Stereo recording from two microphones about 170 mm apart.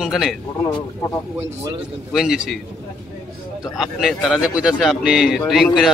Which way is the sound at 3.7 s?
Centre (ahead or behind).